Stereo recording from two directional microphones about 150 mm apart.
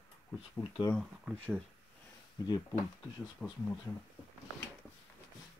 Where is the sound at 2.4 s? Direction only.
25° left (ahead or behind).